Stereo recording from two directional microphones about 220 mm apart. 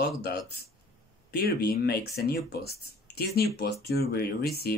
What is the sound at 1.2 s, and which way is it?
Speech, 45° left (ahead or behind).